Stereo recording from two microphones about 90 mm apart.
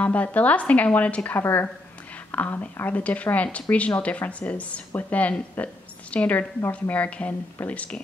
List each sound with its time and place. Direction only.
0.0 s speech: 15° left (ahead or behind)